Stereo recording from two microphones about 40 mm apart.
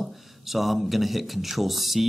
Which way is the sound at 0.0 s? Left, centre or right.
Centre.